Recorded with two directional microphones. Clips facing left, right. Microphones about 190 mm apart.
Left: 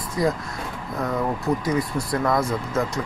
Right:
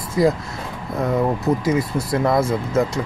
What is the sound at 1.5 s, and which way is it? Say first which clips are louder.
Speech: right 4 dB; 20° right (ahead or behind).